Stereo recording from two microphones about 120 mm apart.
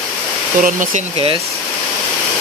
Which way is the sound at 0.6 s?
90° right.